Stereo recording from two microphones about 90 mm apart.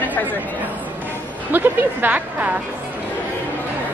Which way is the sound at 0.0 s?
20° left (ahead or behind).